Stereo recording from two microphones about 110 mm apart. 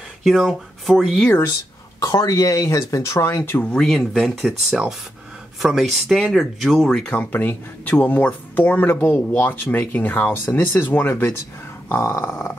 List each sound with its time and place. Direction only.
0.2 s speech: centre (ahead or behind)
1.2 s speech: 15° left (ahead or behind)
2.0 s speech: 30° left (ahead or behind)
3.7 s speech: centre (ahead or behind); by 12.5 s 25° left (ahead or behind)